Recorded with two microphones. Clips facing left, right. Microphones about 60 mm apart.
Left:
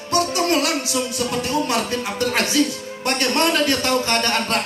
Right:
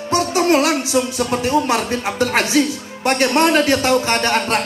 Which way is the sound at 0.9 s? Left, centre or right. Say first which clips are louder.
Right 5 dB; right.